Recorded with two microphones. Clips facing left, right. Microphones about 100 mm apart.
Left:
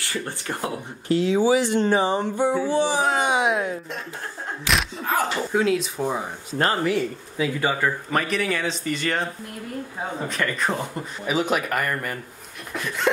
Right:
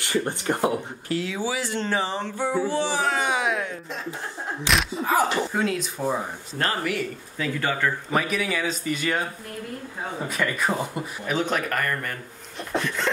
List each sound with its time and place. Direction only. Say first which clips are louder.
0.0 s speech: right 5 dB; 20° right (ahead or behind)
1.0 s speech: left 11 dB; 25° left (ahead or behind)
4.6 s speech: right 1 dB; centre (ahead or behind)
6.8 s speech: left 5 dB; 30° left (ahead or behind)
7.3 s speech: left 3 dB; 10° left (ahead or behind)
8.1 s speech: left 1 dB; 5° right (ahead or behind)
11.2 s speech: left 3 dB; 5° left (ahead or behind)
12.7 s a sound: right 4 dB; 25° right (ahead or behind)